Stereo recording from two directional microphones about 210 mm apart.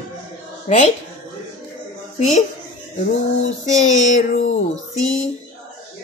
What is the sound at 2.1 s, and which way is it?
Speech, 35° left (ahead or behind).